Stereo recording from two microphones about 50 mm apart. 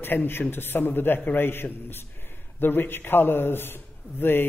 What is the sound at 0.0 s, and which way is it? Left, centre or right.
A woman's voice, left.